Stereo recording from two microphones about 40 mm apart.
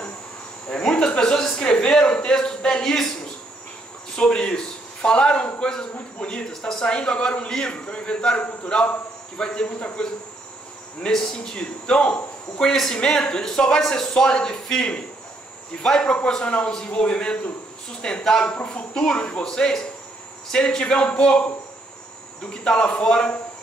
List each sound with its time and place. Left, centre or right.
0.7 s speech: centre
4.1 s a man's voice: left
11.1 s speech: centre